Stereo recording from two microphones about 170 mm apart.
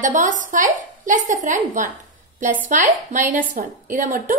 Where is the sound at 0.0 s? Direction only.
50° right (ahead or behind).